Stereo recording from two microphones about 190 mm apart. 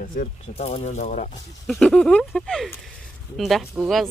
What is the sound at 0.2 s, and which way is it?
Speech, 55° left (ahead or behind).